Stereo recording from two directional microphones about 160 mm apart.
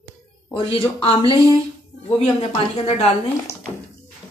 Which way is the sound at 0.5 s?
35° left (ahead or behind).